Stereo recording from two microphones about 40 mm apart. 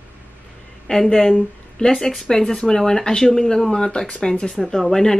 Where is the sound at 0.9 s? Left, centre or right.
Left.